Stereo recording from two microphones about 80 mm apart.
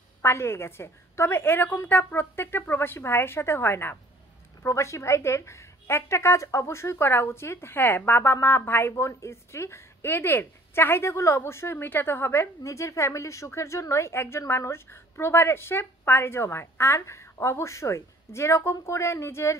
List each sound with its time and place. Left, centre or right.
0.2 s a woman's voice: left